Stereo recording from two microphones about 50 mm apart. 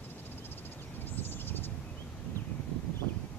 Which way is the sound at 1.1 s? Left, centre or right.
Left.